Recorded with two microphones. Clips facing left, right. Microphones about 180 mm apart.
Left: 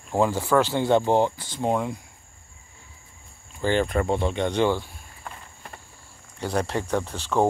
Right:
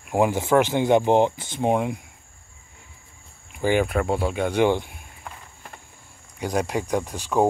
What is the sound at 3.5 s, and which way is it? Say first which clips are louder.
Speech: right 2 dB; 10° right (ahead or behind).